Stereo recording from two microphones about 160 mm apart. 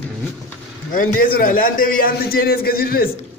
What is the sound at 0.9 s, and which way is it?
A man's voice, 65° left (ahead or behind).